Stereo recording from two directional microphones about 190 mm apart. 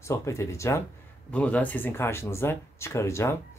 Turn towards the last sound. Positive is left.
turn(degrees=15)  # may be behind; listen again after turning